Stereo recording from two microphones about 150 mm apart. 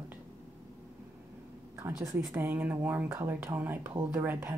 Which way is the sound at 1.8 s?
20° right (ahead or behind).